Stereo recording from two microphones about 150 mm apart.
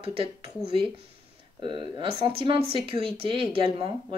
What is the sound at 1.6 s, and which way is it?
Speech, 30° right (ahead or behind).